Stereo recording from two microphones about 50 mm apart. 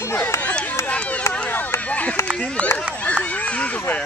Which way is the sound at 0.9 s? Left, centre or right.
Left.